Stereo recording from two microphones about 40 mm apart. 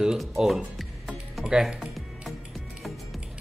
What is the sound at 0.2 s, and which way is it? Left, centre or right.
Music, centre.